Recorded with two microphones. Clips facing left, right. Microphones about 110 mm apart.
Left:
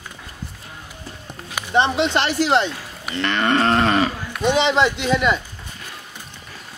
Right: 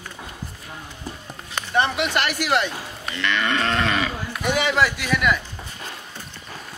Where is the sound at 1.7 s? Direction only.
25° left (ahead or behind).